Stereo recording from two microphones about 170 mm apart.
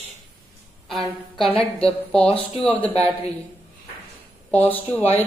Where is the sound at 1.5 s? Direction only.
35° left (ahead or behind).